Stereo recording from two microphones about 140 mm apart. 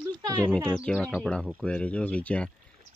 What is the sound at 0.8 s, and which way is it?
Speech, 5° left (ahead or behind).